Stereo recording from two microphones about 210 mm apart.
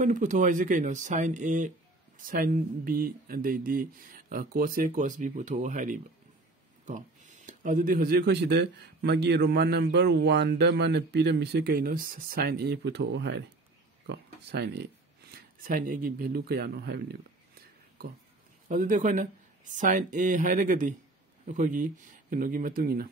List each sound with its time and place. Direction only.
0.0 s speech: 35° right (ahead or behind); by 14.9 s 55° right (ahead or behind)
15.3 s speech: 40° right (ahead or behind)